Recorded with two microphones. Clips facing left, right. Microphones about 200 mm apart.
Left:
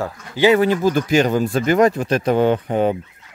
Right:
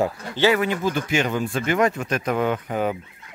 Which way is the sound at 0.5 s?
35° left (ahead or behind).